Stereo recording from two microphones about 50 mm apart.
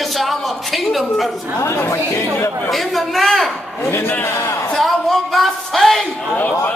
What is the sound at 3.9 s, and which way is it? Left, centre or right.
Speech, left.